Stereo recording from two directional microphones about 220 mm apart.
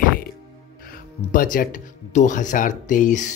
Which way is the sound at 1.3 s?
40° left (ahead or behind).